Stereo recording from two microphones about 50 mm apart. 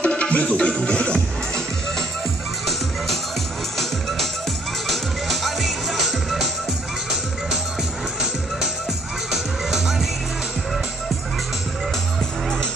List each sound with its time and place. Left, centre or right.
0.0 s music: left
4.8 s music: centre
9.3 s music: centre